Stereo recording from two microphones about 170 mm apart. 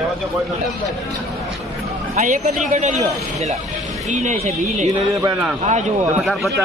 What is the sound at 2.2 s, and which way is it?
Speech, 45° right (ahead or behind).